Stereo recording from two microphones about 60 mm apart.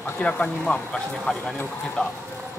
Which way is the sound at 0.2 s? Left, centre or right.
Centre.